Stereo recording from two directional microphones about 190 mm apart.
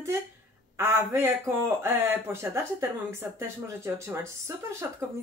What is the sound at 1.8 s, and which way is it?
Speech, 15° right (ahead or behind).